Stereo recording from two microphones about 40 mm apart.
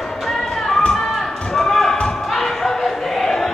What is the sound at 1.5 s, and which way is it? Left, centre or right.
Basketball bounce, centre.